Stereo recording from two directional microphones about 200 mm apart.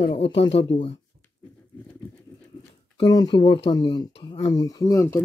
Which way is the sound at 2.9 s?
20° left (ahead or behind).